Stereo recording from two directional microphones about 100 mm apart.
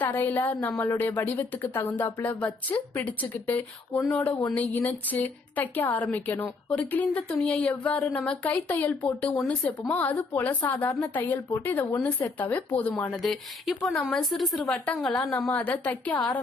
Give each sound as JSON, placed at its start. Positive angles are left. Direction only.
{"t": 0.0, "sound": "a woman's voice", "side_deg": 20}
{"t": 13.2, "sound": "speech", "side_deg": 0}
{"t": 14.7, "sound": "speech", "side_deg": 15}